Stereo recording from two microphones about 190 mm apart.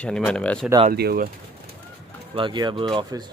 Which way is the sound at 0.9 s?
55° right (ahead or behind).